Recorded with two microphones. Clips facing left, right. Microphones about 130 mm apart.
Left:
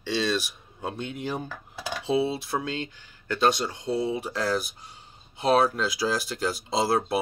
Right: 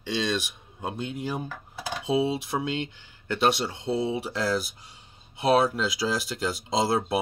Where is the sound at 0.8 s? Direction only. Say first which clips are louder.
Even; 15° right (ahead or behind).